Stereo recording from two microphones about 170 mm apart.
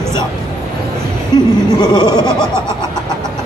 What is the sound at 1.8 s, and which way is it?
Speech, 25° left (ahead or behind).